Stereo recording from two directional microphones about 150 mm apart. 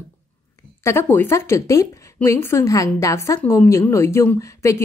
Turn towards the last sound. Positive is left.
turn(degrees=20)  # may be behind; listen again after turning